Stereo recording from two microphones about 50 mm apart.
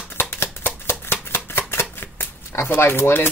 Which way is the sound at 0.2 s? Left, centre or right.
Left.